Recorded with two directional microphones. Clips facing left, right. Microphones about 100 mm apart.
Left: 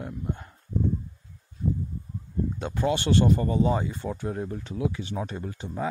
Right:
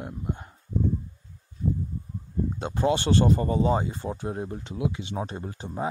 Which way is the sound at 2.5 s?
25° right (ahead or behind).